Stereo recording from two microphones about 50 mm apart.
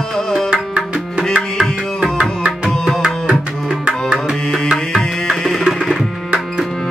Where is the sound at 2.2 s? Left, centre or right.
Centre.